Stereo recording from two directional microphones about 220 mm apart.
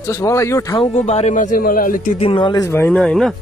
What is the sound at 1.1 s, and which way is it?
A man's voice, 30° left (ahead or behind).